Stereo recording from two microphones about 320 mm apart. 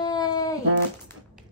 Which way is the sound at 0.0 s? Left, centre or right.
Centre.